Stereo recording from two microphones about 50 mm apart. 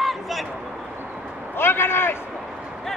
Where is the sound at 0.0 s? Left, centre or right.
Centre.